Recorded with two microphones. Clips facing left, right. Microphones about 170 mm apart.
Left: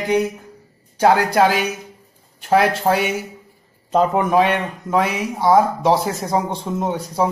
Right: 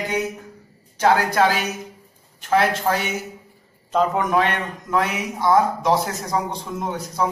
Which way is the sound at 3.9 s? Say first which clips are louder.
Left 3 dB; 30° left (ahead or behind).